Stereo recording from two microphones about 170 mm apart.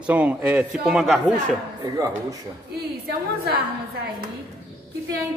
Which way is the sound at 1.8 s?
20° right (ahead or behind).